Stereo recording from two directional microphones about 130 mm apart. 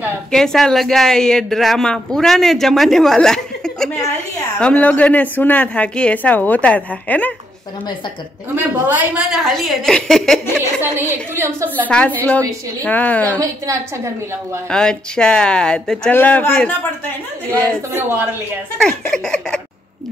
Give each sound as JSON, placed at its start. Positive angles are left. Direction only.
{"t": 0.3, "sound": "a woman's voice", "side_deg": 5}
{"t": 8.5, "sound": "a woman's voice", "side_deg": -15}
{"t": 9.3, "sound": "speech", "side_deg": 0}
{"t": 10.8, "sound": "a woman's voice", "side_deg": -15}
{"t": 11.9, "sound": "a woman's voice", "side_deg": 10}
{"t": 13.4, "sound": "a woman's voice", "side_deg": -25}
{"t": 14.7, "sound": "a woman's voice", "side_deg": 5}
{"t": 18.8, "sound": "speech", "side_deg": 5}